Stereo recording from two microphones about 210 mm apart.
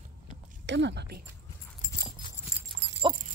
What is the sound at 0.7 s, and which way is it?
Speech, 55° right (ahead or behind).